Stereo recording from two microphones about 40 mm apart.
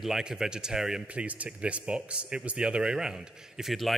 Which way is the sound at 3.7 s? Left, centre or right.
Centre.